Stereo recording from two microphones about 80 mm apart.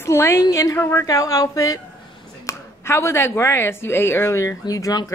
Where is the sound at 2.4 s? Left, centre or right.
Left.